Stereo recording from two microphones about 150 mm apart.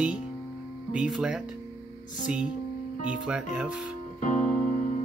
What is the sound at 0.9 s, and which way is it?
Speech, 5° right (ahead or behind).